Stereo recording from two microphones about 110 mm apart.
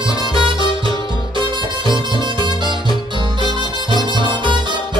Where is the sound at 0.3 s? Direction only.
50° right (ahead or behind).